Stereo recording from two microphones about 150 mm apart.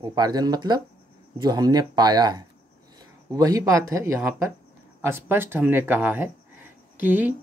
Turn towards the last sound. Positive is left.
turn(degrees=-10)  # may be behind; listen again after turning